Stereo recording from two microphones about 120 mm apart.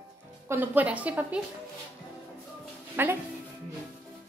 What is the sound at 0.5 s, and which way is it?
Speech, 15° right (ahead or behind).